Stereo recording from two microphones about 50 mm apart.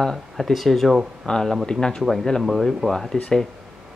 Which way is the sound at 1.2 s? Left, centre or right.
Centre.